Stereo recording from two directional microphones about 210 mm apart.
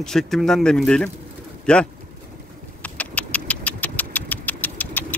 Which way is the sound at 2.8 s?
5° left (ahead or behind).